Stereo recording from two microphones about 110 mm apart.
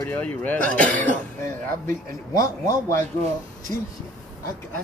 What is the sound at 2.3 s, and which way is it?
Speech, 30° left (ahead or behind).